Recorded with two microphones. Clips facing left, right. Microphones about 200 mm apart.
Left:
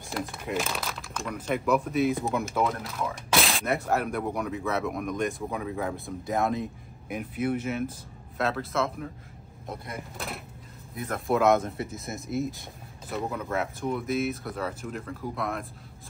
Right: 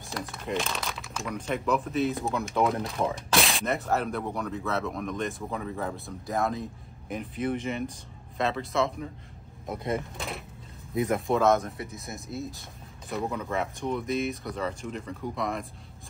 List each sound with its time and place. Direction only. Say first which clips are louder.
0.0 s speech: left 2 dB; centre (ahead or behind)
4.6 s speech: left 1 dB; 15° left (ahead or behind)
5.5 s speech: left 2 dB; 5° left (ahead or behind)
10.1 s speech: right 1 dB; centre (ahead or behind)